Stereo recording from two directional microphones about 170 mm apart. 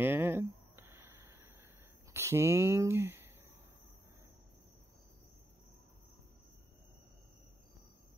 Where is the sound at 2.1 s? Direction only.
15° right (ahead or behind).